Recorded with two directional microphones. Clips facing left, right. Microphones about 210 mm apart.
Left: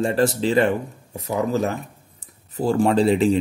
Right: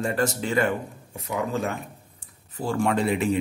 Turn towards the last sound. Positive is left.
turn(degrees=30)  # may be behind; listen again after turning